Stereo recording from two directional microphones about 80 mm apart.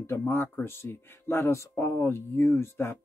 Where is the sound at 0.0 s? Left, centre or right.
Left.